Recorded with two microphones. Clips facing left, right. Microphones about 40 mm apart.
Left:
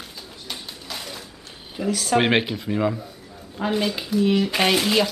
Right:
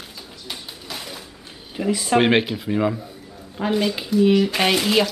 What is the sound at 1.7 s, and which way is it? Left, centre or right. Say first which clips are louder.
Speech: right 2 dB; centre.